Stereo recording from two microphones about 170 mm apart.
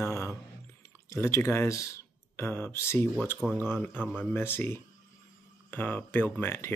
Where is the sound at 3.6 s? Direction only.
10° left (ahead or behind).